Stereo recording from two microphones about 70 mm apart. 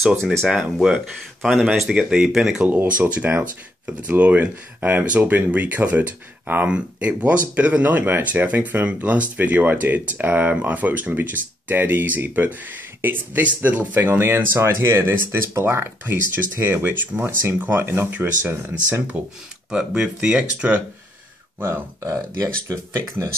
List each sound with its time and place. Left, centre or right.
0.0 s speech: centre
1.7 s speech: centre
2.7 s speech: right
19.7 s speech: centre
21.5 s speech: right
22.0 s speech: right